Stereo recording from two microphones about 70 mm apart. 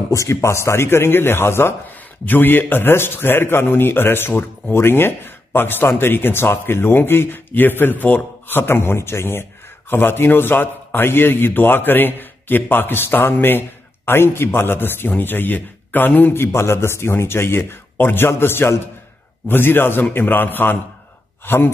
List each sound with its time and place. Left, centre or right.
0.1 s a man's voice: left